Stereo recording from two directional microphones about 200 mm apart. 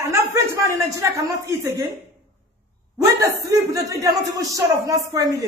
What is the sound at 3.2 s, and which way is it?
Speech, 15° right (ahead or behind).